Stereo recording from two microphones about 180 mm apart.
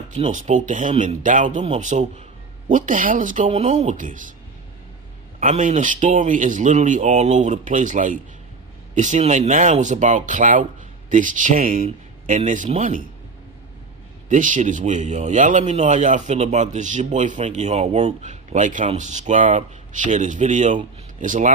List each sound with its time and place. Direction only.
0.1 s speech: 40° right (ahead or behind)
5.4 s speech: 45° right (ahead or behind)
14.3 s speech: 45° right (ahead or behind)